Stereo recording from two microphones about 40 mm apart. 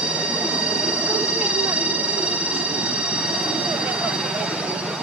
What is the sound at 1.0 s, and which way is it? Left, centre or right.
Vehicle, right.